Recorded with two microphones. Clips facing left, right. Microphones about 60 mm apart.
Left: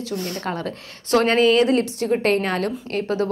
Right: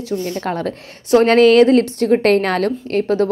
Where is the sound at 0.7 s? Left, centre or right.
Right.